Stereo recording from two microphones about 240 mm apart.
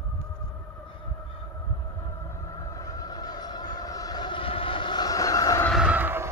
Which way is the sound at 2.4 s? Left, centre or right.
Centre.